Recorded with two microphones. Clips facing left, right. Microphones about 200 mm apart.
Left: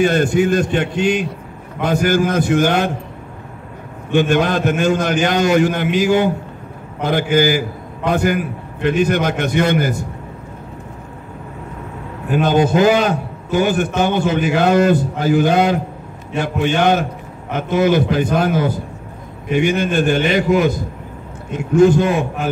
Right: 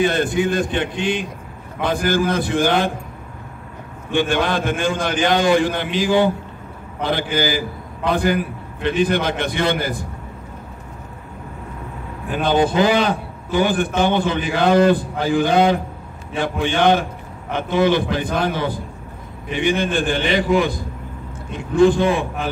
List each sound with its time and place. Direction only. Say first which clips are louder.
0.0 s a man's voice: left 4 dB; 45° left (ahead or behind)
4.1 s a man's voice: left 4 dB; 45° left (ahead or behind)
12.3 s a man's voice: left 3 dB; 45° left (ahead or behind)